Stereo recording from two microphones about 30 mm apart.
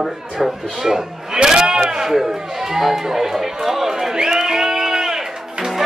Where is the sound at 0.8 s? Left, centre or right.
Centre.